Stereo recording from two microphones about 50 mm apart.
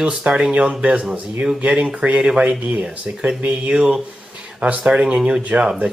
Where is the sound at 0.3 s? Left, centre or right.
Centre.